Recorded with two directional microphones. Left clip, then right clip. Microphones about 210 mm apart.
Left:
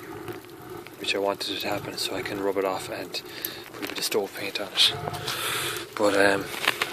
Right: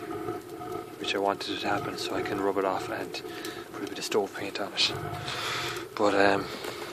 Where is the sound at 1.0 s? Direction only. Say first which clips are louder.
Left 2 dB; 5° right (ahead or behind).